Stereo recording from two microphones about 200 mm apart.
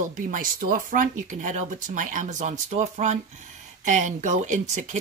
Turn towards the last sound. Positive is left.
turn(degrees=-40)  # may be behind; listen again after turning